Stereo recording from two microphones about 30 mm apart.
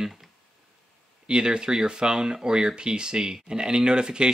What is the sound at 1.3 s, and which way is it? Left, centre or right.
Speech, right.